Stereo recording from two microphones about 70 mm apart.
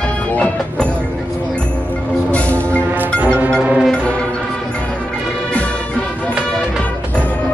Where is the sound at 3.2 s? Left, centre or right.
Right.